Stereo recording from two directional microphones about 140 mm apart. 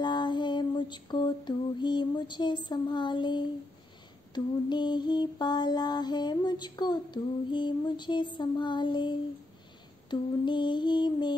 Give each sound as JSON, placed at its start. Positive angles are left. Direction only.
{"t": 0.0, "sound": "lullaby", "side_deg": 35}
{"t": 4.3, "sound": "mantra", "side_deg": 30}